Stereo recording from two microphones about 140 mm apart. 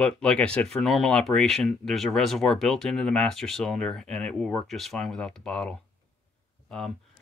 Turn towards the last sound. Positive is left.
turn(degrees=5)  # may be behind; listen again after turning